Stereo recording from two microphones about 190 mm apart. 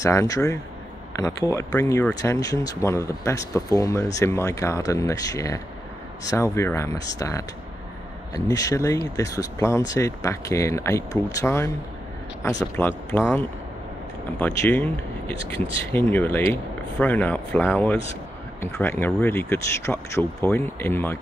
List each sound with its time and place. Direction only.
0.0 s speech: 15° left (ahead or behind)
12.7 s speech: 10° left (ahead or behind)
14.4 s speech: 10° left (ahead or behind)
15.9 s speech: 10° left (ahead or behind)